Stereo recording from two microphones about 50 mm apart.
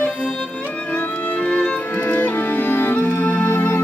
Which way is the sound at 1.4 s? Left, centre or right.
Left.